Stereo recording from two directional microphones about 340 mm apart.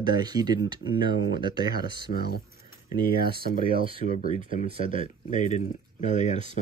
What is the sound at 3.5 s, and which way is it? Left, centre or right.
Speech, centre.